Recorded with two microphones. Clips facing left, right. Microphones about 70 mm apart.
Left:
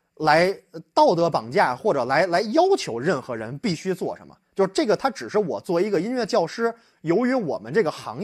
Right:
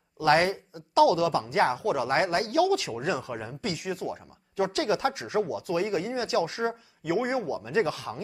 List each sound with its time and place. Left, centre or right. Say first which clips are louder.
0.2 s speech: left 4 dB; left
2.5 s speech: left 6 dB; left